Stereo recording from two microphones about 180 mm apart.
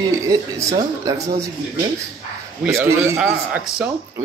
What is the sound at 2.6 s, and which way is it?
Speech, 10° right (ahead or behind).